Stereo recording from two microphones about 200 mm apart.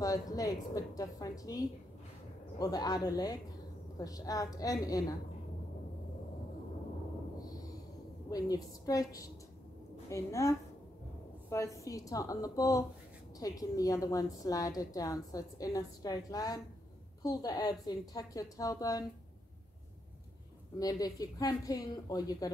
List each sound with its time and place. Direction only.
0.0 s a woman's voice: 20° left (ahead or behind)
7.5 s a sound: 20° left (ahead or behind)
8.3 s a woman's voice: 20° left (ahead or behind)
11.5 s a woman's voice: 15° left (ahead or behind)
20.8 s a woman's voice: 20° left (ahead or behind)